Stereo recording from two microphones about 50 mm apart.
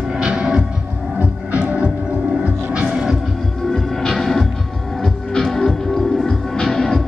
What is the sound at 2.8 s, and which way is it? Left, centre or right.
Music, centre.